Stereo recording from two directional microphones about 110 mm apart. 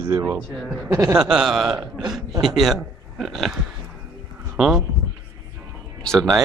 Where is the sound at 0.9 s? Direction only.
25° right (ahead or behind).